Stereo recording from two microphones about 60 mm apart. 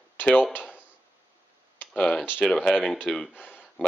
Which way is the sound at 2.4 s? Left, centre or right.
Centre.